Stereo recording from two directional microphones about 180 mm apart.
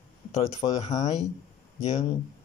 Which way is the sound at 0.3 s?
35° left (ahead or behind).